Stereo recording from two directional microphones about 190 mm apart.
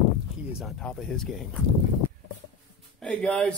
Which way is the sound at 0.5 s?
Centre (ahead or behind).